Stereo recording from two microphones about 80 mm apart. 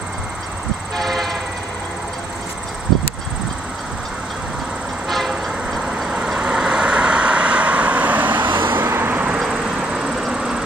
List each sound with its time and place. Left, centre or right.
0.9 s train: centre
5.0 s vehicle: centre
6.1 s vehicle: centre
8.4 s vehicle: right
8.7 s vehicle: right
9.4 s vehicle: centre